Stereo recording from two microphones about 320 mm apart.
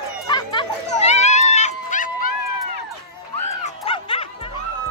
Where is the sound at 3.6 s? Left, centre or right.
Centre.